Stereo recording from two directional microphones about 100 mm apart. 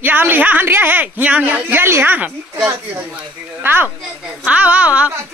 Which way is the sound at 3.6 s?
20° right (ahead or behind).